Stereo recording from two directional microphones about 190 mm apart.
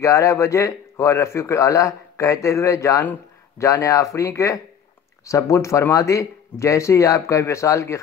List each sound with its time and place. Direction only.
0.0 s a man's voice: 15° left (ahead or behind)